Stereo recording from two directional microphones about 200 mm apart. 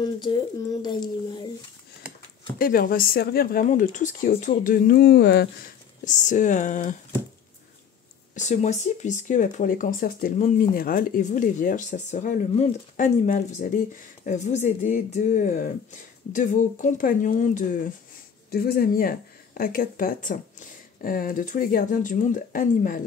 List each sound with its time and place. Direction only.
0.3 s a child's voice: 25° left (ahead or behind)
2.6 s speech: 45° left (ahead or behind)
6.0 s speech: 40° left (ahead or behind)
8.4 s speech: 35° left (ahead or behind)